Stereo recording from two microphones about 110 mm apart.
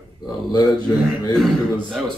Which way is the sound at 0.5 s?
35° left (ahead or behind).